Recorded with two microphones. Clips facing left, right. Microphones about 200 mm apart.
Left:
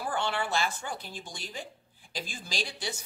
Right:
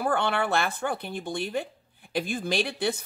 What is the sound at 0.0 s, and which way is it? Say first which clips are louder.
Speech: right 6 dB; 60° right (ahead or behind).